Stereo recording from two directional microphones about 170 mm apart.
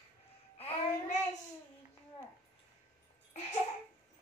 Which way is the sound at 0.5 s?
35° left (ahead or behind).